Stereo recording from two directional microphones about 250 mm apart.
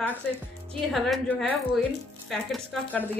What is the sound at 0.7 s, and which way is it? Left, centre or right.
A woman's voice, centre.